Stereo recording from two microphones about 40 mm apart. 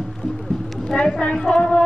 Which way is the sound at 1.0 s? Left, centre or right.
Left.